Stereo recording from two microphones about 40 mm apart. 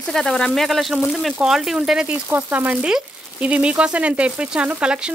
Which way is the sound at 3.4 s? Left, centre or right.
Right.